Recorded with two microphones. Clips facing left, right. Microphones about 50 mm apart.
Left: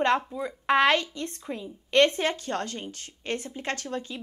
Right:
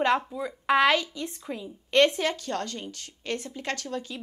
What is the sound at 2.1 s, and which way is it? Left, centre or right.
A woman's voice, left.